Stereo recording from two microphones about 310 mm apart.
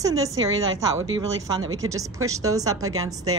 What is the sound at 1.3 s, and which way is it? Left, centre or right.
Speech, right.